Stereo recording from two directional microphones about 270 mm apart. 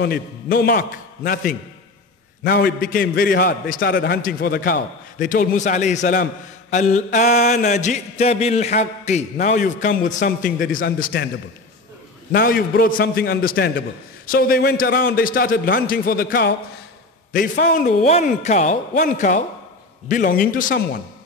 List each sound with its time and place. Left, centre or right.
0.0 s a man's voice: left
5.2 s mantra: left
12.3 s a man's voice: left
17.3 s mantra: left
20.1 s a man's voice: left